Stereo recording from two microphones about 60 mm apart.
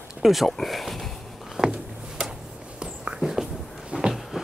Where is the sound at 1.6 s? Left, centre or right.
Centre.